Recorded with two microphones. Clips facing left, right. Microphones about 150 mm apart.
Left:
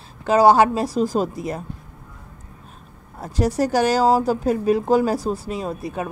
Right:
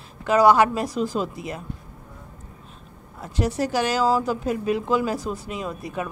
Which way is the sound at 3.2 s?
40° left (ahead or behind).